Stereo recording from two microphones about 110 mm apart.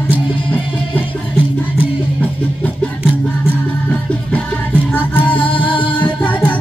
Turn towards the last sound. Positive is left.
turn(degrees=15)  # may be behind; listen again after turning